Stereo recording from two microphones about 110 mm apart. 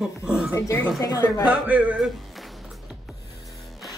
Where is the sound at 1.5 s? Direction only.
15° right (ahead or behind).